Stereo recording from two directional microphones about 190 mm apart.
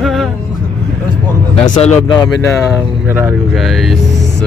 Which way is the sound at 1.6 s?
40° left (ahead or behind).